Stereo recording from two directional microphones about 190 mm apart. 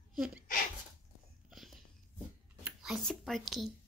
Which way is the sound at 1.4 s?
Centre (ahead or behind).